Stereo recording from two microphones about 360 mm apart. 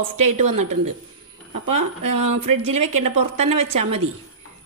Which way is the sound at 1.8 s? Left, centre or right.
Right.